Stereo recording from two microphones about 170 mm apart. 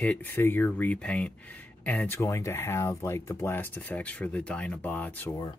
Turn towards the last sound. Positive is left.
turn(degrees=10)  # may be behind; listen again after turning